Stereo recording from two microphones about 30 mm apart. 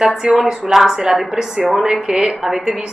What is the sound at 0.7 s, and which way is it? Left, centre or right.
A woman's voice, right.